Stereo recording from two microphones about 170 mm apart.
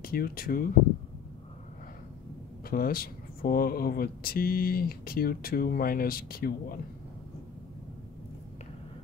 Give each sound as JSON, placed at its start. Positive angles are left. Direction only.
{"t": 0.0, "sound": "speech", "side_deg": 60}
{"t": 2.7, "sound": "speech", "side_deg": 60}